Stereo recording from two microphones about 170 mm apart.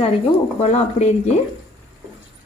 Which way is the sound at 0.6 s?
40° left (ahead or behind).